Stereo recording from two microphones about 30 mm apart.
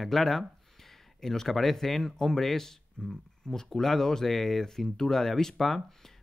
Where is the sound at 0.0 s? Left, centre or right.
Centre.